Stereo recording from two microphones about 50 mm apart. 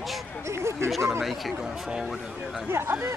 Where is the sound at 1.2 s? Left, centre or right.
Centre.